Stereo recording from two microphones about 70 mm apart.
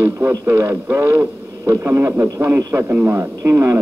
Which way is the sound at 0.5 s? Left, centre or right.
Right.